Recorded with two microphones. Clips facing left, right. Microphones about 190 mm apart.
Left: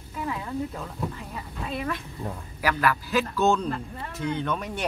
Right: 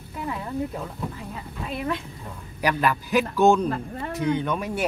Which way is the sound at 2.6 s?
20° right (ahead or behind).